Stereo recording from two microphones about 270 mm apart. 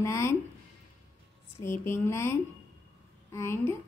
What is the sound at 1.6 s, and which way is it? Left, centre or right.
A woman's voice, centre.